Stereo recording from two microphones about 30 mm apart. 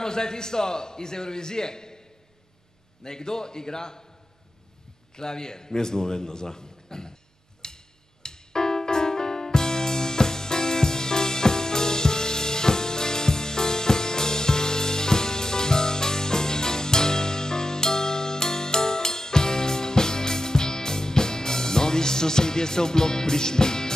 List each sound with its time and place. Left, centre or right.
0.0 s a man's voice: left
3.0 s a man's voice: left
5.1 s a man's voice: left
7.6 s piano: left